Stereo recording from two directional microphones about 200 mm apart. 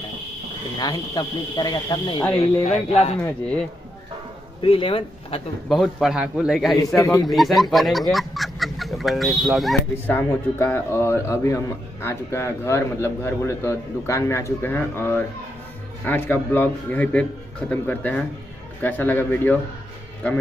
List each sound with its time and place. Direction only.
0.7 s speech: 20° left (ahead or behind)
2.4 s speech: 30° left (ahead or behind)
3.3 s speech: 5° left (ahead or behind)
4.6 s speech: 25° left (ahead or behind)
5.7 s a man's voice: centre (ahead or behind)
7.0 s speech: 15° left (ahead or behind)
7.2 s a man's voice: centre (ahead or behind)